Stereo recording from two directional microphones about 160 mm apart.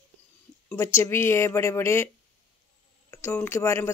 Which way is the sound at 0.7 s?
15° left (ahead or behind).